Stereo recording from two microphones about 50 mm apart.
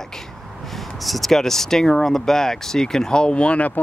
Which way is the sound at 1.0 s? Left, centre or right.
Centre.